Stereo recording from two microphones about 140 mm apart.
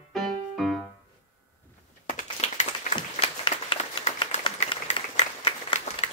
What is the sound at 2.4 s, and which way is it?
Applause, 50° left (ahead or behind).